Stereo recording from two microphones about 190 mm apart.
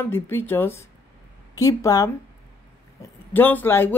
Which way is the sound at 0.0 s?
10° left (ahead or behind).